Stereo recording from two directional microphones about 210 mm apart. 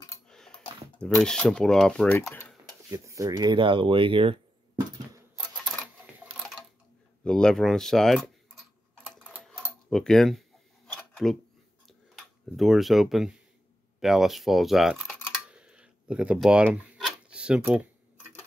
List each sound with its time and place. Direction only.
0.3 s speech: 5° left (ahead or behind)
2.9 s speech: 15° right (ahead or behind)
5.4 s a sound: centre (ahead or behind)
7.2 s tick-tock: 5° left (ahead or behind)
11.0 s a sound: 5° left (ahead or behind)
12.2 s speech: centre (ahead or behind)
15.4 s rub: 5° right (ahead or behind)